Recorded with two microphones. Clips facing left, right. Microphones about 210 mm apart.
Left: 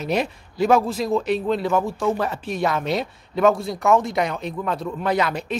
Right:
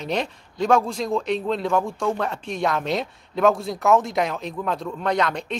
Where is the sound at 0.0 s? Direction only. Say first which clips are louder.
Left 3 dB; 5° left (ahead or behind).